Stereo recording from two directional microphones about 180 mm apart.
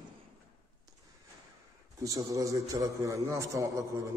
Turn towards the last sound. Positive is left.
turn(degrees=-20)  # may be behind; listen again after turning